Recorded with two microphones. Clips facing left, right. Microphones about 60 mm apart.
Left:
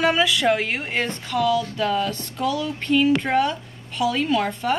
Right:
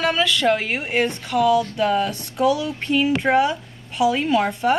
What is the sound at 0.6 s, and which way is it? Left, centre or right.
A woman's voice, centre.